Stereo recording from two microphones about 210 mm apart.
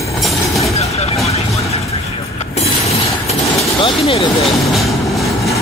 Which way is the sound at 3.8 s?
25° left (ahead or behind).